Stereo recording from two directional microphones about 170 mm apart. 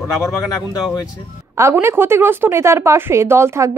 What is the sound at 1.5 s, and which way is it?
A woman's voice, 15° right (ahead or behind).